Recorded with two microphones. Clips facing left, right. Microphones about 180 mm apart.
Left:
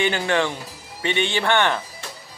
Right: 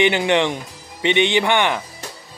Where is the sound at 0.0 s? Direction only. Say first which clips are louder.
Right 4 dB; 20° right (ahead or behind).